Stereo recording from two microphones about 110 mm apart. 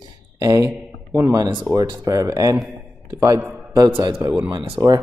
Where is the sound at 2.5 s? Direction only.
5° right (ahead or behind).